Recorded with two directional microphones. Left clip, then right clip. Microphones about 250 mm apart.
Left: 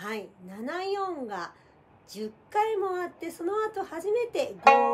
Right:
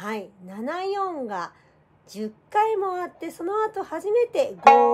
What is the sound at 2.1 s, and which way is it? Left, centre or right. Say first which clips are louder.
A woman's voice: right 5 dB; right.